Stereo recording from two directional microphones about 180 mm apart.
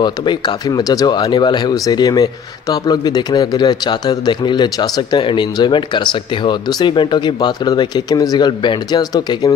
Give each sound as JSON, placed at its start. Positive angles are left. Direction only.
{"t": 0.0, "sound": "a man's voice", "side_deg": 25}